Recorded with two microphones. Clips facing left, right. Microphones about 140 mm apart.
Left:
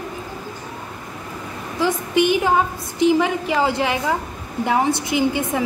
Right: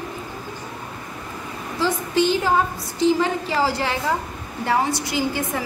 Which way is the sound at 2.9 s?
15° left (ahead or behind).